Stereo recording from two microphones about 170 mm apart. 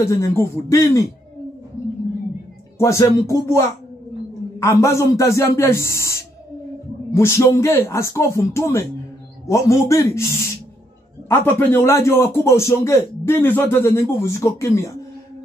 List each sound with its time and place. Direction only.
0.0 s a man's voice: 15° left (ahead or behind)
2.8 s a man's voice: 15° left (ahead or behind)